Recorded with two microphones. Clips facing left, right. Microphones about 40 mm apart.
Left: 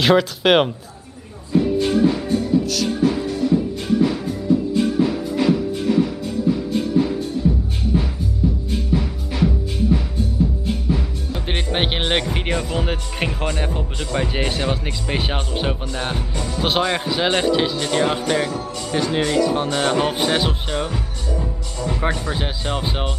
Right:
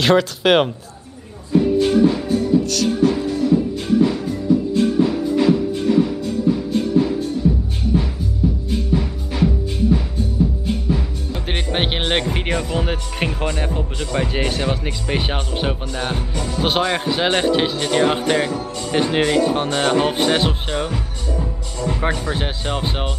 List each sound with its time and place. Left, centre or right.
0.0 s speech: centre
1.5 s music: centre
18.9 s speech: right
19.8 s speech: centre